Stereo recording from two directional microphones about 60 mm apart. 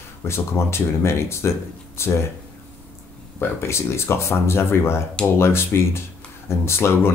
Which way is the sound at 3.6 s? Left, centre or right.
Left.